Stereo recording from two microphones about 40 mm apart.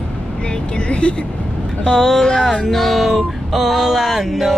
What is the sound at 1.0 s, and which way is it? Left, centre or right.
Speech, left.